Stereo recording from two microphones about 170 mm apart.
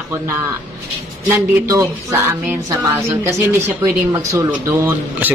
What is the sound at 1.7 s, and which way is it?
Speech, 15° right (ahead or behind).